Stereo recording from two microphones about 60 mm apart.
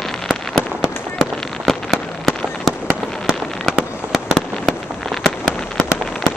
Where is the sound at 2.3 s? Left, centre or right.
Centre.